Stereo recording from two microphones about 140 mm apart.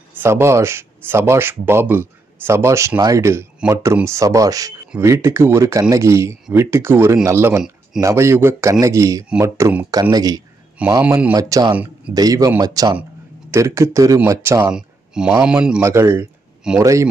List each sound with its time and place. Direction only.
0.1 s speech: 15° right (ahead or behind)
7.5 s a sound: 5° right (ahead or behind)
8.0 s speech: 20° right (ahead or behind)
10.1 s speech: 30° right (ahead or behind)
11.0 s speech: 15° right (ahead or behind)
11.3 s speech: 25° right (ahead or behind)
11.7 s speech: 10° right (ahead or behind)
12.1 s speech: 25° right (ahead or behind)
14.7 s a sound: 5° right (ahead or behind)
15.4 s speech: 5° right (ahead or behind)
15.8 s speech: 20° right (ahead or behind)